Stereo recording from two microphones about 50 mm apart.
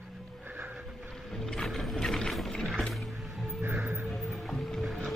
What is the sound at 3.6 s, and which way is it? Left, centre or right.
Music, right.